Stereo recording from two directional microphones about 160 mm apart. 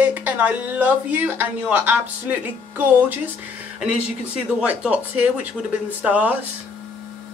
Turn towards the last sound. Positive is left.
turn(degrees=-10)  # may be behind; listen again after turning